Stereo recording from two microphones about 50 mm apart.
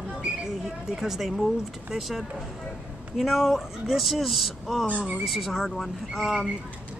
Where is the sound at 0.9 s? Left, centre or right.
Centre.